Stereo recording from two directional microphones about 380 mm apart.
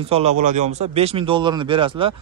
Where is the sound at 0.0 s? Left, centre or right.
Centre.